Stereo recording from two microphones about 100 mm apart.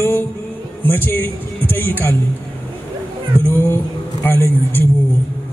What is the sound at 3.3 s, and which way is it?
Speech, 20° left (ahead or behind).